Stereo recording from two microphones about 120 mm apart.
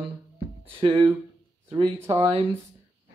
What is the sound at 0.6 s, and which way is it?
Speech, 45° right (ahead or behind).